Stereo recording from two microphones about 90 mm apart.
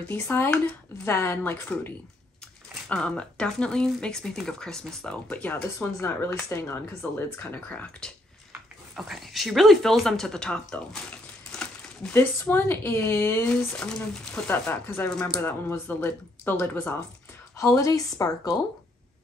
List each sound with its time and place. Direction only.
0.1 s speech: 25° left (ahead or behind)
2.9 s speech: 10° left (ahead or behind)
5.9 s speech: 30° left (ahead or behind)
7.3 s speech: 15° left (ahead or behind)
8.9 s speech: centre (ahead or behind)
11.5 s crumpling: 10° left (ahead or behind)
12.1 s speech: 25° left (ahead or behind)
13.7 s speech: 10° left (ahead or behind)
14.5 s speech: 20° left (ahead or behind)
15.0 s speech: 10° left (ahead or behind)
15.4 s speech: 25° left (ahead or behind)
17.6 s speech: 40° left (ahead or behind)